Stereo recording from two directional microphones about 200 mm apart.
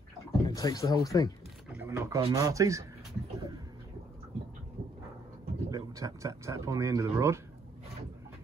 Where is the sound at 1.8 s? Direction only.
15° right (ahead or behind).